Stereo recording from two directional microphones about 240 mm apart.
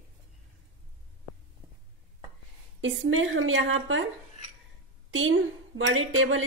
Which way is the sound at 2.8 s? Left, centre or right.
Right.